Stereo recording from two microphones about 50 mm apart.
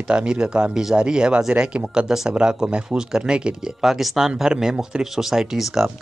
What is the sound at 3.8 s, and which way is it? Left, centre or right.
Speech, centre.